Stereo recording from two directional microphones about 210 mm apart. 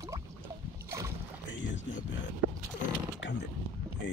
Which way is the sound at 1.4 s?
60° left (ahead or behind).